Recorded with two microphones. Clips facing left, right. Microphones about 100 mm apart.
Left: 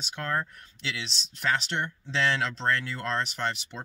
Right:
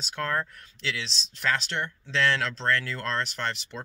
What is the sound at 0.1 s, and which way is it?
Speech, 20° left (ahead or behind).